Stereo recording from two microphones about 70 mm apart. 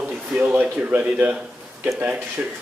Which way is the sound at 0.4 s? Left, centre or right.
Centre.